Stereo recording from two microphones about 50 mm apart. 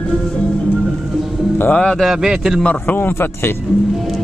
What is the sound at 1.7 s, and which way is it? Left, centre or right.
Speech, left.